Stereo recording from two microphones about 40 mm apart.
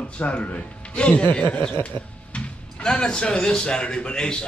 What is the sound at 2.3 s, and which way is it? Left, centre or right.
Speech, left.